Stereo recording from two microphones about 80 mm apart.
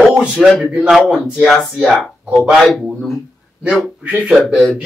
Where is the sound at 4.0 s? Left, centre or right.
Centre.